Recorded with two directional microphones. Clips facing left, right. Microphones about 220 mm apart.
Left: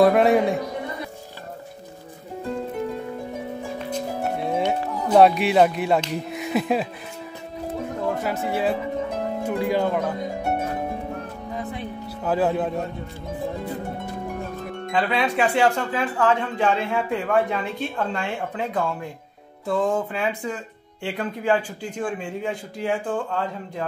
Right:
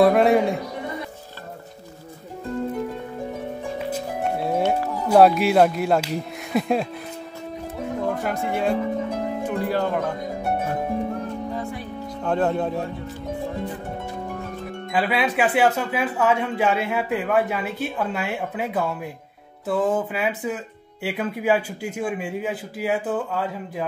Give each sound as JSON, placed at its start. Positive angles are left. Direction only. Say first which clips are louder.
{"t": 0.0, "sound": "music", "louder": "even", "side_deg": 0}
{"t": 3.9, "sound": "music", "louder": "left 2 dB", "side_deg": 0}
{"t": 5.0, "sound": "speech", "louder": "right 1 dB", "side_deg": -5}
{"t": 8.2, "sound": "speech", "louder": "even", "side_deg": 5}
{"t": 12.2, "sound": "speech", "louder": "even", "side_deg": 5}
{"t": 14.9, "sound": "speech", "louder": "even", "side_deg": -5}